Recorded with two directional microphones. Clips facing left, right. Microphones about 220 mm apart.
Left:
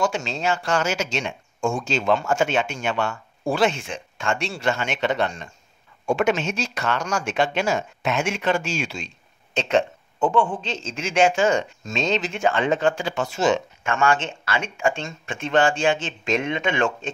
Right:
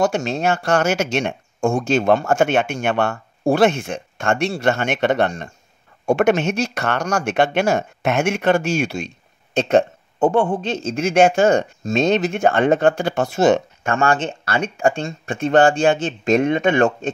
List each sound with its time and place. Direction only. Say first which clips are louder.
0.0 s speech: right 5 dB; 60° right (ahead or behind)
13.8 s speech: right 3 dB; 40° right (ahead or behind)